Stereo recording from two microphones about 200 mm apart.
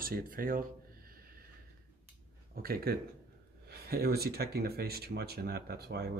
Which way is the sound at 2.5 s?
50° right (ahead or behind).